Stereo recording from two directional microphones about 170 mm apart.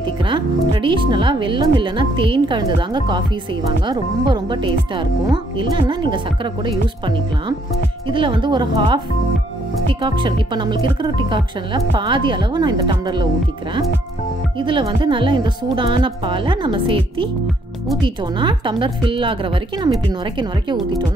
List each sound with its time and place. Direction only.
0.2 s speech: 30° right (ahead or behind)
10.0 s speech: 25° right (ahead or behind)
14.6 s speech: 30° right (ahead or behind)